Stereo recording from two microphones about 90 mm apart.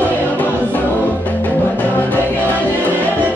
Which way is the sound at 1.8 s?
20° left (ahead or behind).